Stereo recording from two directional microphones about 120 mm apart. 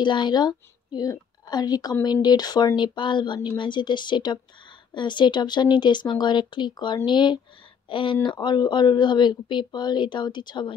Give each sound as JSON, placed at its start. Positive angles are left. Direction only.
{"t": 0.0, "sound": "a woman's voice", "side_deg": 40}